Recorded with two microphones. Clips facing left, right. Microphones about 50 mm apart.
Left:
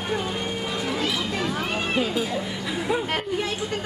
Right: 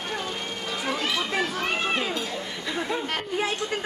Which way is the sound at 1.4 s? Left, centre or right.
Centre.